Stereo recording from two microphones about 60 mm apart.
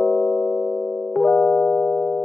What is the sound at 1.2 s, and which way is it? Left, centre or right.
Music, centre.